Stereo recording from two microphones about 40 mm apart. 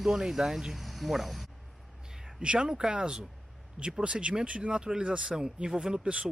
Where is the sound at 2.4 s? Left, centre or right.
Right.